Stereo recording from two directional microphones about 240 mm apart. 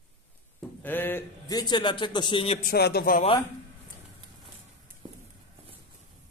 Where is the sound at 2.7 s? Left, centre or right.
Left.